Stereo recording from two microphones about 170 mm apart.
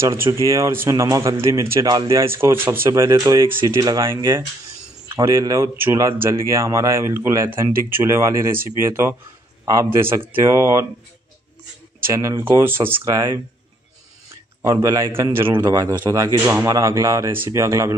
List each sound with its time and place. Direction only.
0.2 s a man's voice: 15° right (ahead or behind)
12.0 s a man's voice: 15° right (ahead or behind)
14.6 s a man's voice: 20° right (ahead or behind)